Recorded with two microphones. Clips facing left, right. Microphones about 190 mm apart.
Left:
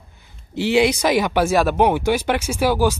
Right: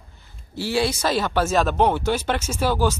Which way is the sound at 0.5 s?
20° left (ahead or behind).